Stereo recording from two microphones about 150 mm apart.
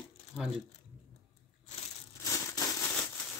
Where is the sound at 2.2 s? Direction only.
20° left (ahead or behind).